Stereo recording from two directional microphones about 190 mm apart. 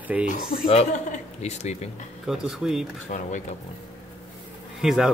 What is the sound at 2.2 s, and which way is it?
Speech, centre (ahead or behind).